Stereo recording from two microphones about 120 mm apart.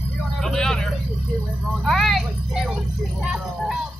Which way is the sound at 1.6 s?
5° left (ahead or behind).